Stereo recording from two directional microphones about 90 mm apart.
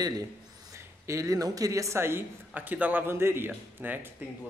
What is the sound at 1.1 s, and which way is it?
Speech, 35° right (ahead or behind).